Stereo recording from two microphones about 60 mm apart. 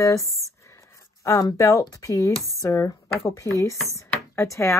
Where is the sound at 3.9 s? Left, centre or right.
Left.